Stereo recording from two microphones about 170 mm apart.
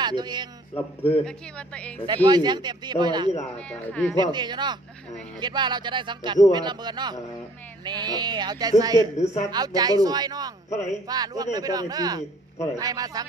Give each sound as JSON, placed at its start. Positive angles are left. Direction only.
{"t": 0.0, "sound": "a man's voice", "side_deg": -25}
{"t": 1.2, "sound": "a woman's voice", "side_deg": 5}
{"t": 2.2, "sound": "speech", "side_deg": -25}
{"t": 3.5, "sound": "a woman's voice", "side_deg": 10}
{"t": 4.2, "sound": "speech", "side_deg": -25}
{"t": 9.1, "sound": "speech", "side_deg": 40}
{"t": 9.5, "sound": "speech", "side_deg": -25}
{"t": 10.7, "sound": "speech", "side_deg": 45}
{"t": 11.1, "sound": "speech", "side_deg": -25}